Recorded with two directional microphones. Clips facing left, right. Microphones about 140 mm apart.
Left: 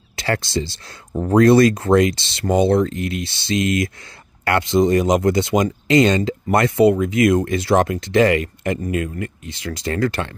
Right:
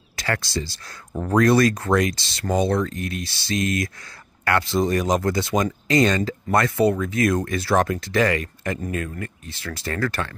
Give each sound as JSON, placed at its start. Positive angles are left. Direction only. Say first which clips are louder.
{"t": 0.1, "sound": "speech", "louder": "left 4 dB", "side_deg": 25}